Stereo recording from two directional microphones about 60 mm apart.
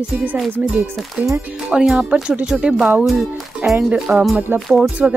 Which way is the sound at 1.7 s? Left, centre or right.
Centre.